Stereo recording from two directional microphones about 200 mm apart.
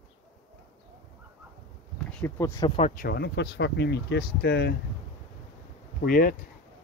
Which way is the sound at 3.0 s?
55° left (ahead or behind).